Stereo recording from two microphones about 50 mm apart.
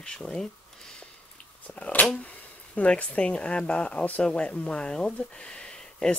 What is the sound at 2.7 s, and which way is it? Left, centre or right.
Speech, left.